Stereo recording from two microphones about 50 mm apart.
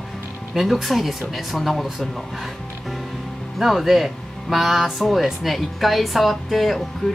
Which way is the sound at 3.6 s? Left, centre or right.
Centre.